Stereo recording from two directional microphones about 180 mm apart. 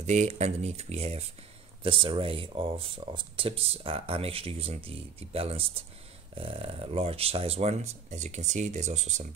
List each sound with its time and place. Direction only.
0.0 s speech: 40° right (ahead or behind)